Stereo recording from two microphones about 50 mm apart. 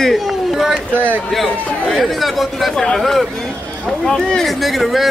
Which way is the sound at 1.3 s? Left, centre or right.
Centre.